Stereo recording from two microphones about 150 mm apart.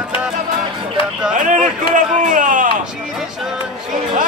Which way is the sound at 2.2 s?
60° right (ahead or behind).